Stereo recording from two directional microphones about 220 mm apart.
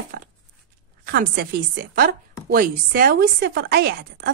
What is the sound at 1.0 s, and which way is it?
A woman's voice, 45° right (ahead or behind).